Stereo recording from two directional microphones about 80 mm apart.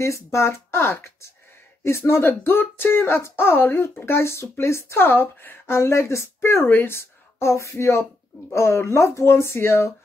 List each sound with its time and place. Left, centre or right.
0.0 s speech: left